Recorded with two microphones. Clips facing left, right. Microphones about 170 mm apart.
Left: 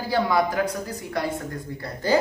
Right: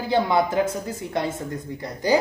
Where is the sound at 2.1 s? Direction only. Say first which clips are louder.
Right 1 dB; 15° right (ahead or behind).